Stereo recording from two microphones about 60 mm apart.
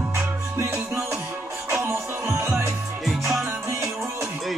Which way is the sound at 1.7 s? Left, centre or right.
Right.